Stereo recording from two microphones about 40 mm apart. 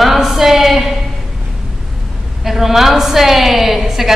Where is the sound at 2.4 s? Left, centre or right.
Centre.